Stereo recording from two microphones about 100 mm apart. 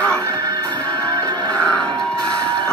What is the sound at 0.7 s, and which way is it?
Music, 45° right (ahead or behind).